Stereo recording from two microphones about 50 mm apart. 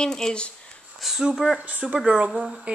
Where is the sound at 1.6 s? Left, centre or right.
Right.